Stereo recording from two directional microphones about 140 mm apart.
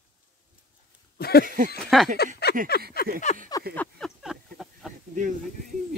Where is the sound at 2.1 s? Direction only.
70° right (ahead or behind).